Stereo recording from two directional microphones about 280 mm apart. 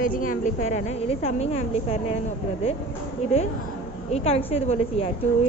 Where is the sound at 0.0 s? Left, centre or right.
Left.